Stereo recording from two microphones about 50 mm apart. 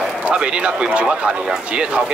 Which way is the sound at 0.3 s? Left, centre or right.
Centre.